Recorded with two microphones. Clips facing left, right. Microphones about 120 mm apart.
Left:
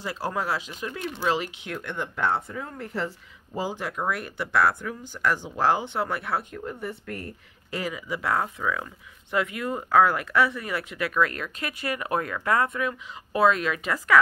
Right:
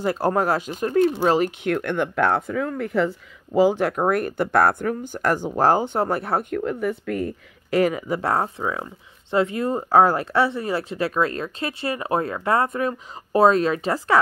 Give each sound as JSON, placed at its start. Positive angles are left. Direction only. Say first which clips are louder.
{"t": 0.0, "sound": "speech", "louder": "right 9 dB", "side_deg": -50}
{"t": 3.5, "sound": "speech", "louder": "right 12 dB", "side_deg": -70}
{"t": 6.5, "sound": "speech", "louder": "right 10 dB", "side_deg": -90}
{"t": 7.7, "sound": "speech", "louder": "right 11 dB", "side_deg": -55}